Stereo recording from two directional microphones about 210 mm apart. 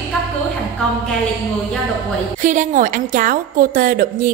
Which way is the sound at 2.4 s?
35° right (ahead or behind).